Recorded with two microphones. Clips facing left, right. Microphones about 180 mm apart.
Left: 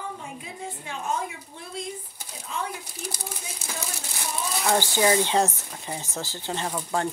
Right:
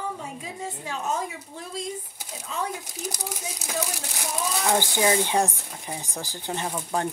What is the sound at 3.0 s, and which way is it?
Speech, 40° right (ahead or behind).